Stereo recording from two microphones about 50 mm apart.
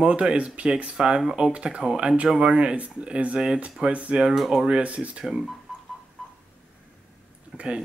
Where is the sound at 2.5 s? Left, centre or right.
Right.